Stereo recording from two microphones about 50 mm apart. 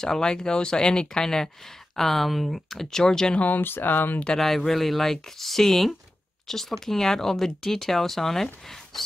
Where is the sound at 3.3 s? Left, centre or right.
Left.